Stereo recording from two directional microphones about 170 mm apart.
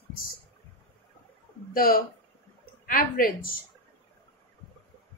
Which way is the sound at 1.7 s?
60° left (ahead or behind).